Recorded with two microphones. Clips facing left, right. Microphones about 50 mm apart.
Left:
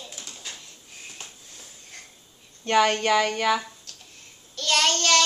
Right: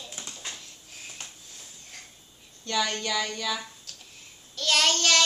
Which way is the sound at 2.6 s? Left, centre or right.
Left.